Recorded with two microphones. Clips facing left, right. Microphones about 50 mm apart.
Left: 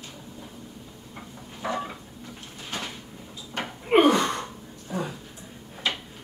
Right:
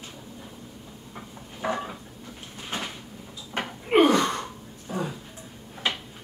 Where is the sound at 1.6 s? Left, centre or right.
Centre.